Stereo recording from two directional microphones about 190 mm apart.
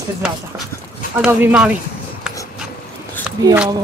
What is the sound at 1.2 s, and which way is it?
Speech, 5° right (ahead or behind).